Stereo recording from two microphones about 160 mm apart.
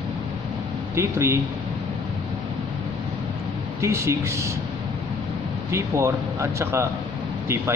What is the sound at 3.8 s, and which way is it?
Speech, 15° right (ahead or behind).